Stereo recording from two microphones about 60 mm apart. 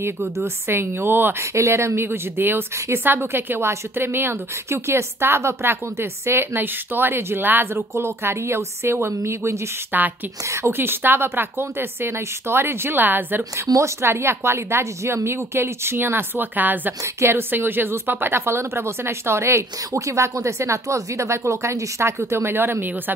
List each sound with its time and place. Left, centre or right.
0.7 s a woman's voice: right
1.4 s a woman's voice: right
7.9 s speech: right
9.9 s a woman's voice: right
10.5 s a woman's voice: right
13.7 s a woman's voice: right
14.0 s speech: right
17.0 s speech: right